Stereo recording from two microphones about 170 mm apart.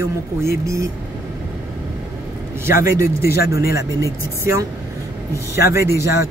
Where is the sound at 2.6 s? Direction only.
15° right (ahead or behind).